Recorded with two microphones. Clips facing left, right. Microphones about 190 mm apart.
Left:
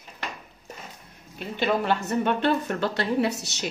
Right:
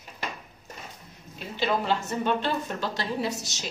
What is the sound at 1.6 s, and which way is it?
A woman's voice, 60° left (ahead or behind).